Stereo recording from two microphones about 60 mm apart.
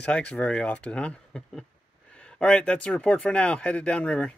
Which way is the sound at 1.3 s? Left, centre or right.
Centre.